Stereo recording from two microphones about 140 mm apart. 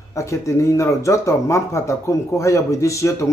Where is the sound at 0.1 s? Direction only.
20° left (ahead or behind).